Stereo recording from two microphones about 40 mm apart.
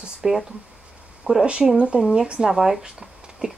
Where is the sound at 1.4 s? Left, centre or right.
Right.